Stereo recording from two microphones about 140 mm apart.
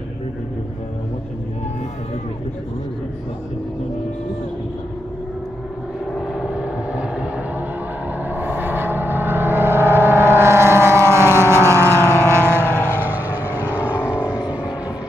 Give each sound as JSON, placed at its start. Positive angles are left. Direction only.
{"t": 6.1, "sound": "vehicle", "side_deg": -5}